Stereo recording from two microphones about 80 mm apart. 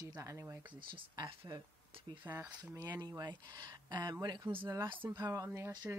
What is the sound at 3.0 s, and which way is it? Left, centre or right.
Speech, right.